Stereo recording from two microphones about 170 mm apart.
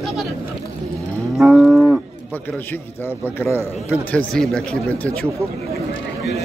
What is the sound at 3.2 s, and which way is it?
A man's voice, 15° left (ahead or behind).